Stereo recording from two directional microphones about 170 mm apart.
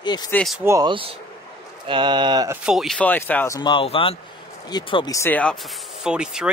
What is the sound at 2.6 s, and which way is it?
Speech, centre (ahead or behind).